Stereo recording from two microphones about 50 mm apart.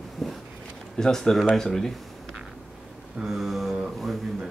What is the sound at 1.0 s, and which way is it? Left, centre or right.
Speech, centre.